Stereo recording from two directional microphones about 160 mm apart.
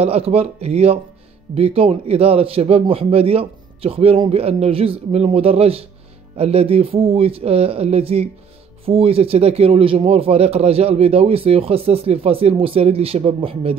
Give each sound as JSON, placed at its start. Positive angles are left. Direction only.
{"t": 0.0, "sound": "speech", "side_deg": -40}